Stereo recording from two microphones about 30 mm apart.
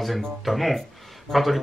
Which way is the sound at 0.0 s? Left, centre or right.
Centre.